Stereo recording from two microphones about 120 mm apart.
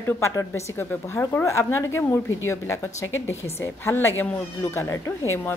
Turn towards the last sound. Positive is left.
turn(degrees=20)  # may be behind; listen again after turning